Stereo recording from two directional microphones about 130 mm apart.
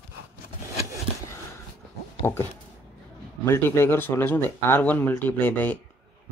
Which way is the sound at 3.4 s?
20° left (ahead or behind).